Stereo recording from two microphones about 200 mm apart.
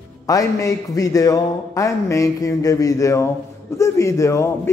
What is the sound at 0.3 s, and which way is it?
Speech, 15° left (ahead or behind).